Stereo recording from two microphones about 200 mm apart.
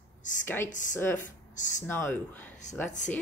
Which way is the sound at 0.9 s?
10° left (ahead or behind).